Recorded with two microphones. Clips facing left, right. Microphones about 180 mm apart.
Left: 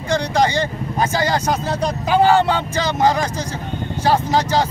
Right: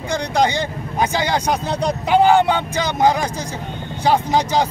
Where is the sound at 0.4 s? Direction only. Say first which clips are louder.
Right 2 dB; 15° right (ahead or behind).